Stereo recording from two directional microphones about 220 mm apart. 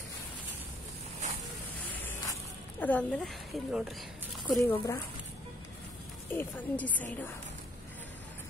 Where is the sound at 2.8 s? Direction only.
5° left (ahead or behind).